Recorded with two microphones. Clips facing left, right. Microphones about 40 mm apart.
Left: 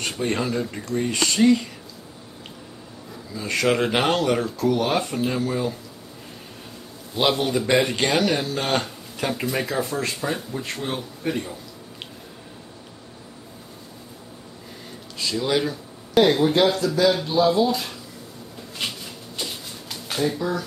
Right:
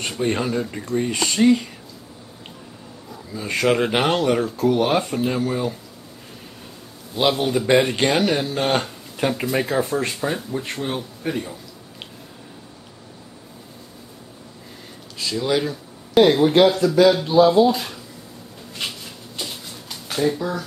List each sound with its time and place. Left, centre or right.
0.2 s speech: centre
3.3 s speech: centre
4.6 s speech: centre
7.2 s speech: centre
7.6 s speech: centre
15.1 s speech: centre
16.7 s speech: right
17.0 s speech: centre
18.8 s a sound: centre